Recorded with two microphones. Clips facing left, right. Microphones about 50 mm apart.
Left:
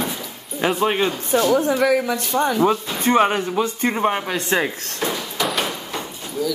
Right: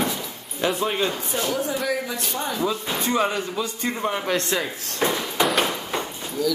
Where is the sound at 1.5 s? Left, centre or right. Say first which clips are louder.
Left 7 dB; left.